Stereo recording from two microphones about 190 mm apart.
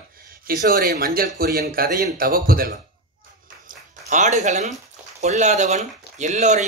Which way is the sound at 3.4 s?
45° right (ahead or behind).